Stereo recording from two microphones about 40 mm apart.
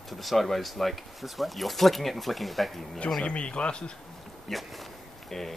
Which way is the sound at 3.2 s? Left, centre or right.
Left.